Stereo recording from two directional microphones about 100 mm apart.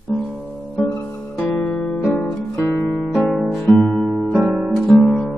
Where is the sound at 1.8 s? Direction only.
10° left (ahead or behind).